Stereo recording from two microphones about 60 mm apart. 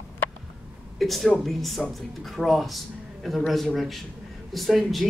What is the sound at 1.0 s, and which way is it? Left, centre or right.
Speech, centre.